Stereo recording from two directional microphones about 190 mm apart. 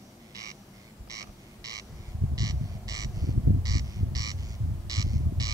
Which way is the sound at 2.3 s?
20° right (ahead or behind).